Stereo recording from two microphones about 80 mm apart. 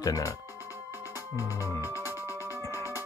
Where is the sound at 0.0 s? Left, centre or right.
Left.